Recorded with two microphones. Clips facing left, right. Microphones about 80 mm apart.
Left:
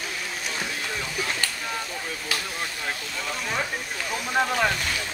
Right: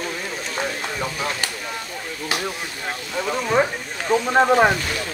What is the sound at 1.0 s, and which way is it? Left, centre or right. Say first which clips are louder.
Speech: right 4 dB; right.